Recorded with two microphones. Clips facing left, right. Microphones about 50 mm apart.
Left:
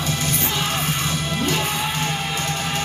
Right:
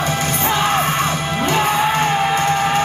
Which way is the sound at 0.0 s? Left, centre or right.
Right.